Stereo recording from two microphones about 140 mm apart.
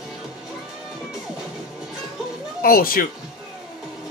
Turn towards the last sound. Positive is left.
turn(degrees=90)